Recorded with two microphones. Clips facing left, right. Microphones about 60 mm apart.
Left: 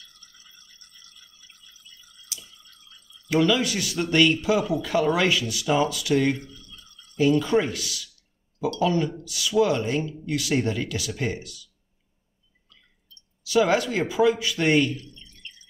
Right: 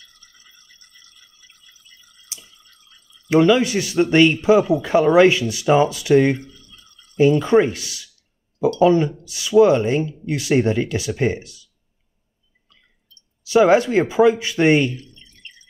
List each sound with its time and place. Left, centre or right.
2.2 s drip: right
3.3 s speech: right
13.4 s a man's voice: right